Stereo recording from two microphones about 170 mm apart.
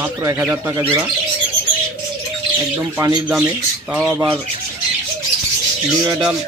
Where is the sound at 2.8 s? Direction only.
15° right (ahead or behind).